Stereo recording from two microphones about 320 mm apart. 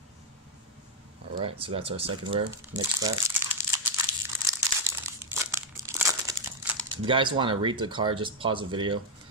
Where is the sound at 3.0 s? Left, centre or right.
Centre.